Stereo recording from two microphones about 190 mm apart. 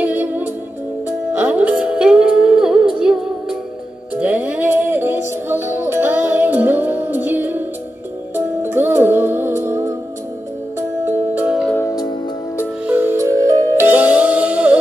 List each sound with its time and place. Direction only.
0.0 s music: 10° right (ahead or behind)
8.6 s music: 10° right (ahead or behind)
11.7 s music: 15° left (ahead or behind)
12.8 s music: 10° right (ahead or behind)